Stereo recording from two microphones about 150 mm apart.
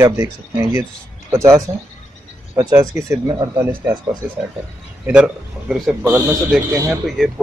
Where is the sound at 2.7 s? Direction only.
20° right (ahead or behind).